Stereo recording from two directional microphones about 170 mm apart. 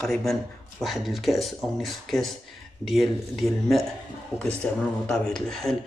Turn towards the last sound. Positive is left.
turn(degrees=5)  # may be behind; listen again after turning